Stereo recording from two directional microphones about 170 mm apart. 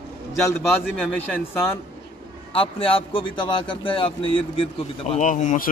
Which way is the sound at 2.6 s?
35° left (ahead or behind).